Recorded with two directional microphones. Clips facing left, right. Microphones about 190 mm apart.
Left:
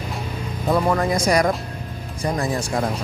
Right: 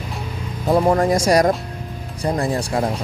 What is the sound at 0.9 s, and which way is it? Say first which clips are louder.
Speech: right 3 dB; 45° right (ahead or behind).